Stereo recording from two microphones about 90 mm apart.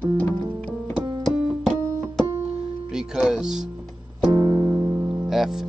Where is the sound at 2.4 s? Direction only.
5° right (ahead or behind).